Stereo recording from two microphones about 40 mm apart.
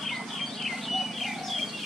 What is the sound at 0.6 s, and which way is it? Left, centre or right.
Bird, centre.